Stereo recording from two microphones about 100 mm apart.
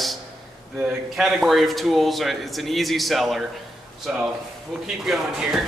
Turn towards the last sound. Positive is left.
turn(degrees=-5)  # may be behind; listen again after turning